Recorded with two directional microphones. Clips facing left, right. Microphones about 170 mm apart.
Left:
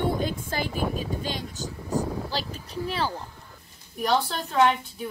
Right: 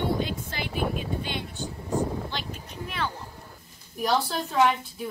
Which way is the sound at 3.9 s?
Centre (ahead or behind).